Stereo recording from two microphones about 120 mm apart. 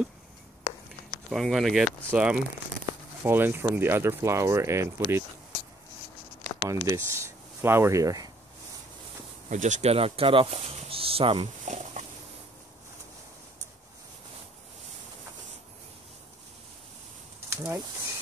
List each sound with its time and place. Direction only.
1.3 s speech: centre (ahead or behind)
2.0 s speech: 10° right (ahead or behind)
6.6 s speech: 25° right (ahead or behind)
9.5 s speech: 90° right; by 11.4 s 50° right (ahead or behind)
11.6 s a sound: 90° right
17.5 s speech: 25° right (ahead or behind)